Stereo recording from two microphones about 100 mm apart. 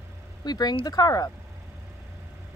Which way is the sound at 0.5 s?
45° left (ahead or behind).